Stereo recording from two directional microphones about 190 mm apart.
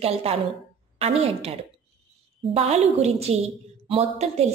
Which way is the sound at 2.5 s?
35° right (ahead or behind).